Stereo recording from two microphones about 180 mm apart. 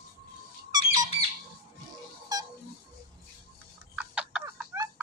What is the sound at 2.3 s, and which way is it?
Music, 20° right (ahead or behind).